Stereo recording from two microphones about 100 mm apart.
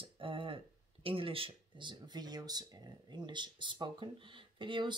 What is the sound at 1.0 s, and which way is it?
Speech, 65° right (ahead or behind).